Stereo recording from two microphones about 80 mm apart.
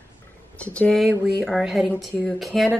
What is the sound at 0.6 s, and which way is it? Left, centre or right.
Speech, centre.